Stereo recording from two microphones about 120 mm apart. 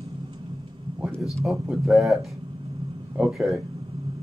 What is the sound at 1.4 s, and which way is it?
Speech, 5° right (ahead or behind).